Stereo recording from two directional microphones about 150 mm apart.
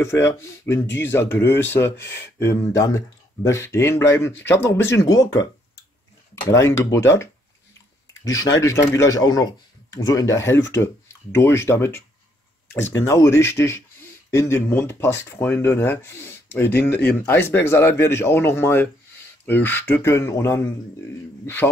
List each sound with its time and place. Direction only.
0.0 s speech: 20° left (ahead or behind)